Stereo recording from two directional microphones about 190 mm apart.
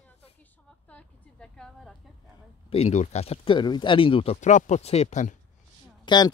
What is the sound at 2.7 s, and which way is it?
Speech, 35° left (ahead or behind).